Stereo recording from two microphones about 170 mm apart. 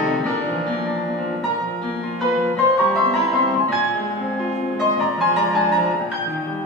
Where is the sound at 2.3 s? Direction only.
Centre (ahead or behind).